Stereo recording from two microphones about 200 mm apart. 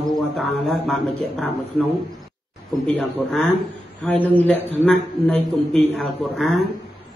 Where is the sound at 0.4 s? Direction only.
Centre (ahead or behind).